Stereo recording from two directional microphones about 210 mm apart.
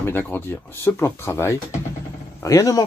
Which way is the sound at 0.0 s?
10° left (ahead or behind).